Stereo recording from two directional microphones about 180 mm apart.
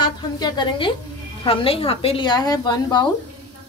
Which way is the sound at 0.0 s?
25° left (ahead or behind).